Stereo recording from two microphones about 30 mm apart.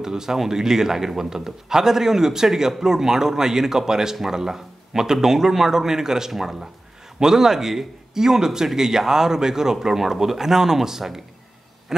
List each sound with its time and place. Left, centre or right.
0.0 s speech: centre